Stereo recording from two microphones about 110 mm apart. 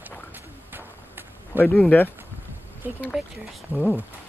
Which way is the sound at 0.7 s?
20° right (ahead or behind).